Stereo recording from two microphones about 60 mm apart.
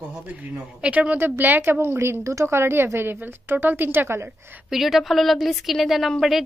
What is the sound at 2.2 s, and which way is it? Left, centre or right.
Speech, right.